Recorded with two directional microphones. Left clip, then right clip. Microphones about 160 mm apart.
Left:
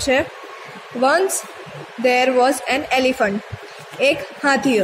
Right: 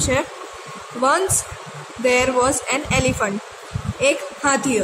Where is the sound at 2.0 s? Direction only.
10° left (ahead or behind).